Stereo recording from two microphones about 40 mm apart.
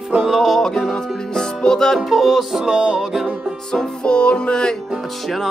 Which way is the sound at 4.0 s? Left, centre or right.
Left.